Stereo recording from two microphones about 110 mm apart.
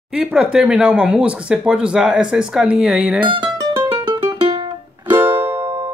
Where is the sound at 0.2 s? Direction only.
5° right (ahead or behind).